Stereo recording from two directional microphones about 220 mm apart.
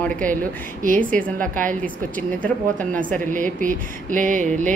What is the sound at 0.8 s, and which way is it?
A woman's voice, 35° right (ahead or behind).